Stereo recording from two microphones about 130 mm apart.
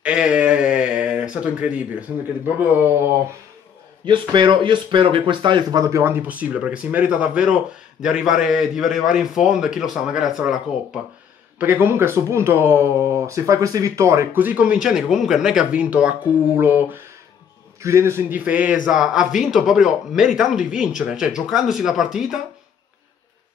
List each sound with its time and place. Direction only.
0.0 s speech: 5° right (ahead or behind)
4.0 s speech: 35° right (ahead or behind); by 11.0 s 5° right (ahead or behind)
11.5 s speech: 15° right (ahead or behind)